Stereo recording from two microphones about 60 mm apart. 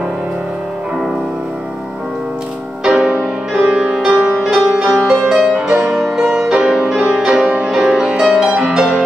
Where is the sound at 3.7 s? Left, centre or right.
Centre.